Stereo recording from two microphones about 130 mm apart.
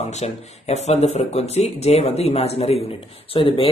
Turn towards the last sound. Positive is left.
turn(degrees=45)  # may be behind; listen again after turning